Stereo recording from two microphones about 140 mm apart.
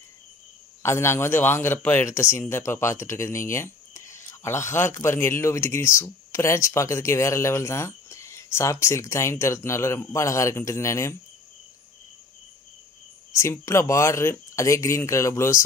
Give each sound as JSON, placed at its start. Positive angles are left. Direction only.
{"t": 0.8, "sound": "speech", "side_deg": 20}
{"t": 13.3, "sound": "speech", "side_deg": 20}